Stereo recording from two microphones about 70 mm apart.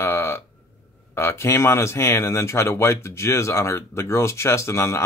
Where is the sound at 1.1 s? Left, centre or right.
Left.